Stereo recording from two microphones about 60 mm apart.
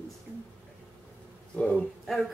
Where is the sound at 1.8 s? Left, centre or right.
Centre.